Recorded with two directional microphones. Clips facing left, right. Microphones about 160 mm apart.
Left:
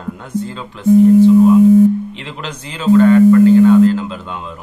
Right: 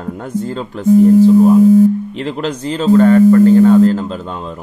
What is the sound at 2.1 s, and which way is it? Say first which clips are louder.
Speech: right 8 dB; 40° right (ahead or behind).